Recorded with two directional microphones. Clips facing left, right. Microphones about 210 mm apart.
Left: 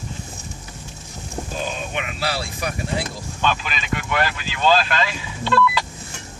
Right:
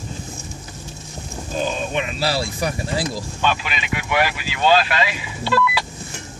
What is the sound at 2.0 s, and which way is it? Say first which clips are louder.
Speech: right 3 dB; 30° right (ahead or behind).